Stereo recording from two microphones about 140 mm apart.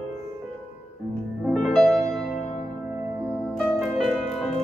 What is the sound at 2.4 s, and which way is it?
Music, 55° left (ahead or behind).